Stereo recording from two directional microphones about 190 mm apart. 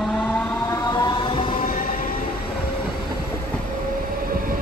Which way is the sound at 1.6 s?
45° left (ahead or behind).